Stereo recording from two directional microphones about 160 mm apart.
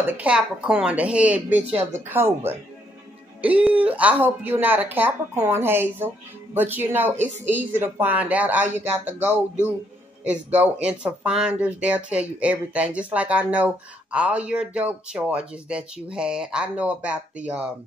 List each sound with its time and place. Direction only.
0.0 s a woman's voice: 10° right (ahead or behind)